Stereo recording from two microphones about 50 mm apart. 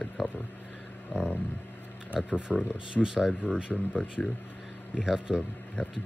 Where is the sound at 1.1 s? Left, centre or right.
Left.